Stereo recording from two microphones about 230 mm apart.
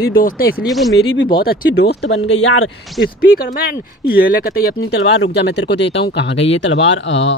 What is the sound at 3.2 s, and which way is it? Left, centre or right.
Speech, left.